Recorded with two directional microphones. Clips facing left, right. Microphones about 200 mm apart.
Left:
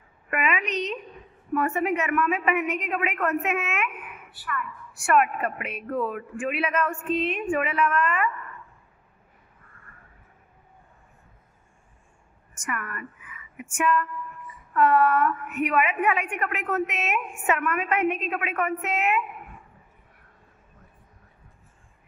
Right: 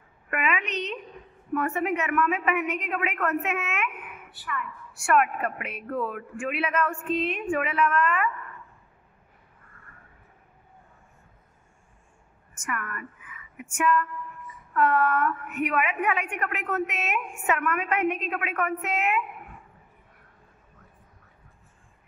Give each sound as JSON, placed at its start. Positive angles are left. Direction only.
{"t": 0.3, "sound": "a sound", "side_deg": 10}
{"t": 1.5, "sound": "a woman's voice", "side_deg": 10}
{"t": 4.3, "sound": "a woman's voice", "side_deg": -20}
{"t": 5.0, "sound": "a woman's voice", "side_deg": 10}
{"t": 12.6, "sound": "a sound", "side_deg": 10}
{"t": 13.7, "sound": "a woman's voice", "side_deg": 10}